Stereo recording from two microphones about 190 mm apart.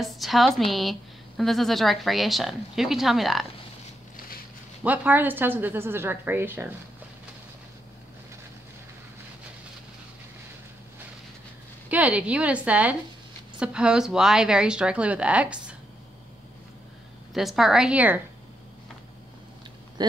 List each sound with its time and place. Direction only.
0.0 s a woman's voice: centre (ahead or behind)
4.8 s a woman's voice: 10° right (ahead or behind)
11.9 s a woman's voice: 10° right (ahead or behind)
17.3 s a woman's voice: centre (ahead or behind)
20.0 s a sound: 20° right (ahead or behind)